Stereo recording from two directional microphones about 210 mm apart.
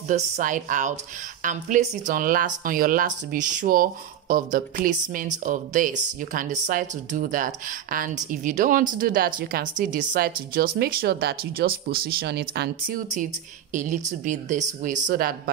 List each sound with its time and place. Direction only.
0.1 s speech: 40° right (ahead or behind)
13.7 s speech: 35° right (ahead or behind)